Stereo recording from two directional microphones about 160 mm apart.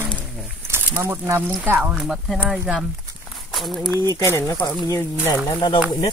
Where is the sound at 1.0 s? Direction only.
15° right (ahead or behind); by 3.9 s centre (ahead or behind).